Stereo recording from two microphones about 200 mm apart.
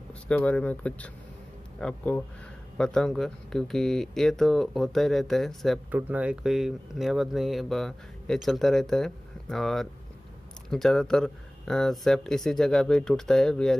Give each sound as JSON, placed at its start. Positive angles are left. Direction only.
{"t": 0.1, "sound": "speech", "side_deg": 5}